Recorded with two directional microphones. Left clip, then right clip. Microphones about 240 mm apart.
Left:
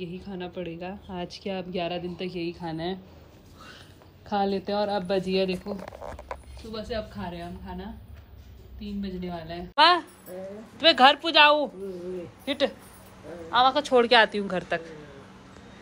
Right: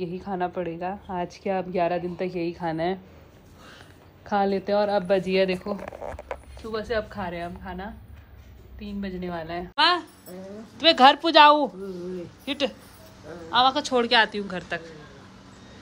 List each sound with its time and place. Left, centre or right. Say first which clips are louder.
0.0 s a woman's voice: right 8 dB; centre
4.3 s a woman's voice: right 3 dB; centre
5.3 s speech: right 2 dB; left
6.6 s speech: right 6 dB; right
9.1 s speech: right 4 dB; right
9.8 s a woman's voice: left 2 dB; centre